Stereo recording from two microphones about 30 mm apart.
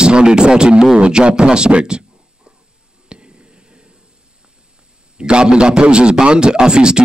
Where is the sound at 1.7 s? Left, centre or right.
Right.